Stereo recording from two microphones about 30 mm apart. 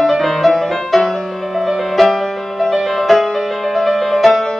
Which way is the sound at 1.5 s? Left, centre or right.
Centre.